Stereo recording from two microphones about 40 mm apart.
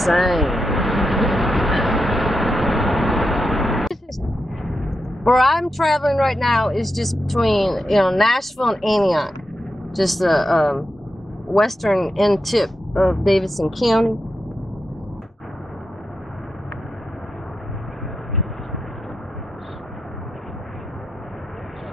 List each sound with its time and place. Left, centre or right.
0.0 s vehicle: centre
4.6 s speech: centre